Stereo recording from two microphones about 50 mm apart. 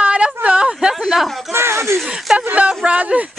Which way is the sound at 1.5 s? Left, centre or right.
Right.